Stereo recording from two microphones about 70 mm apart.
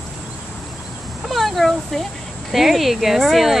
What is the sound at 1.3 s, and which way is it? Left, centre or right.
Speech, centre.